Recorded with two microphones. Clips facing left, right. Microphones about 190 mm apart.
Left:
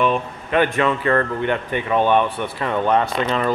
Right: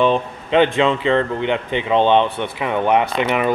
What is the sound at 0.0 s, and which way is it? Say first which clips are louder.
A man's voice: right 3 dB; 25° right (ahead or behind).